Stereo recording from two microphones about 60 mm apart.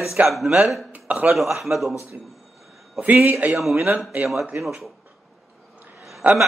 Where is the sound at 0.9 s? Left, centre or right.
Right.